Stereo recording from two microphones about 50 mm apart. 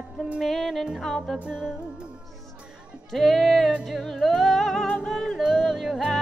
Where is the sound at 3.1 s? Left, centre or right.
Centre.